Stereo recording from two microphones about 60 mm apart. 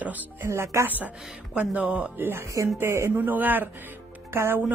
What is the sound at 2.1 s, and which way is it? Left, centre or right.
Speech, right.